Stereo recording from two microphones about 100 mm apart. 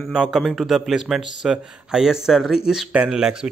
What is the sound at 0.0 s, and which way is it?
A man's voice, 5° right (ahead or behind).